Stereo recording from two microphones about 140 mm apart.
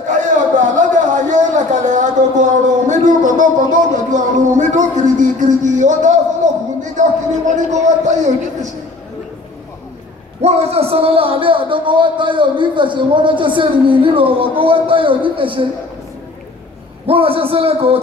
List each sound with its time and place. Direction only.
0.7 s a sound: 65° right (ahead or behind)
10.4 s a man's voice: 45° right (ahead or behind)
17.0 s a man's voice: 40° right (ahead or behind)